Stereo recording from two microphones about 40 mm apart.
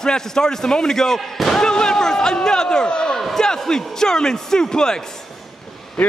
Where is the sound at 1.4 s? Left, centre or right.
Centre.